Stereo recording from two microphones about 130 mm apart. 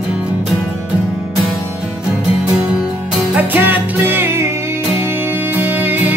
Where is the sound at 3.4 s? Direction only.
15° right (ahead or behind).